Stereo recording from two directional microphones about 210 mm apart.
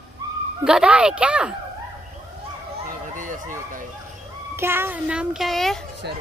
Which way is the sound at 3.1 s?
40° right (ahead or behind).